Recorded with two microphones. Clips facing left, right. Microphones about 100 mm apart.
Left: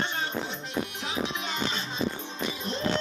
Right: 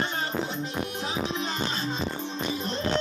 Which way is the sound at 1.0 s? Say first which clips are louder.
Right 2 dB; 35° right (ahead or behind).